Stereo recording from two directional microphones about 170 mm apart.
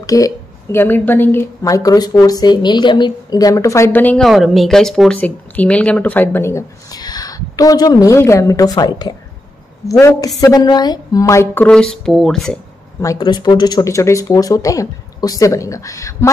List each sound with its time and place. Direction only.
0.0 s a woman's voice: 20° left (ahead or behind); by 12.5 s centre (ahead or behind)
13.0 s a woman's voice: 25° left (ahead or behind)